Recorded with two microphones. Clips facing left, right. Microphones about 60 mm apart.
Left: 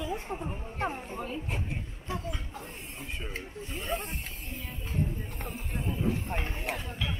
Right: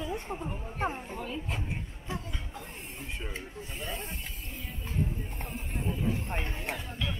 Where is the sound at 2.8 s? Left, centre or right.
Centre.